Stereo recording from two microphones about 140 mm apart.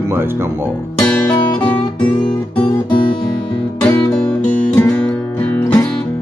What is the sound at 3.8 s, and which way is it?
Music, 5° left (ahead or behind).